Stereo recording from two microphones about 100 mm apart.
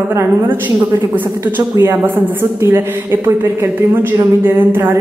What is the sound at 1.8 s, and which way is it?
A woman's voice, 25° right (ahead or behind).